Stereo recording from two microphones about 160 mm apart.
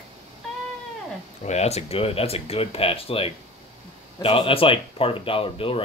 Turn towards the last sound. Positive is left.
turn(degrees=35)  # may be behind; listen again after turning